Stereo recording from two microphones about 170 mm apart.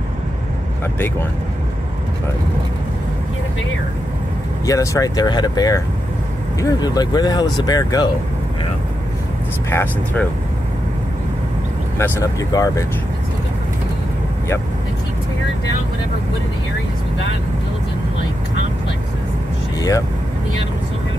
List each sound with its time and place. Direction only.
4.6 s speech: 20° left (ahead or behind)
9.7 s speech: 15° left (ahead or behind)
12.0 s speech: 20° left (ahead or behind)